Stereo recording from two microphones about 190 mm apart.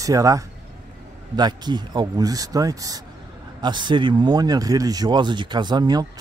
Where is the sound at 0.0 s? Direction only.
15° right (ahead or behind).